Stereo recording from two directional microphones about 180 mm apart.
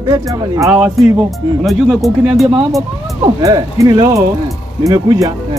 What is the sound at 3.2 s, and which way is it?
Speech, 20° right (ahead or behind).